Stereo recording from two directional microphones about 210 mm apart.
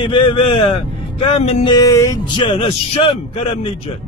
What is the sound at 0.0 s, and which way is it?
A man's voice, 25° left (ahead or behind).